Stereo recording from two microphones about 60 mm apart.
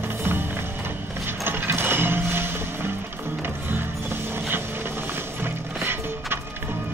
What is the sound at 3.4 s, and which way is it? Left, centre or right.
Mechanisms, right.